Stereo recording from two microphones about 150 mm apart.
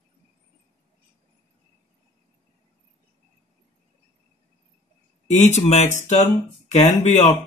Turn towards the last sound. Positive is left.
turn(degrees=50)  # may be behind; listen again after turning